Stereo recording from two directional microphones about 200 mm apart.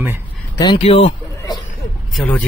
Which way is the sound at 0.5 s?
25° left (ahead or behind).